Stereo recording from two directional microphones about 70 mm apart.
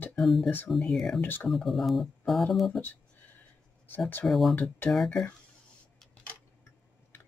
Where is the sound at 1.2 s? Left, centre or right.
Left.